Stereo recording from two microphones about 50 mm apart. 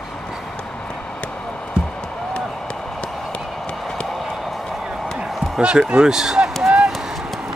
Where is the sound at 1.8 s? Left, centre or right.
Centre.